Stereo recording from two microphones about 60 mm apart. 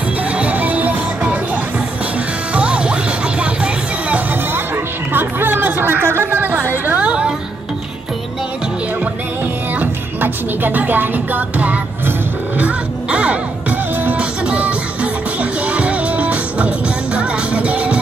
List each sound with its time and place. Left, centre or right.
0.2 s music: right
4.3 s music: right
7.0 s music: centre
9.4 s music: right